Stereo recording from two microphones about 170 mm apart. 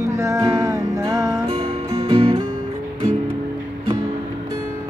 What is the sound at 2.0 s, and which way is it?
Music, 35° right (ahead or behind).